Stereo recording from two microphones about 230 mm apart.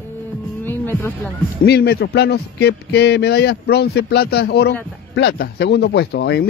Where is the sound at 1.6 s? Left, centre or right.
Left.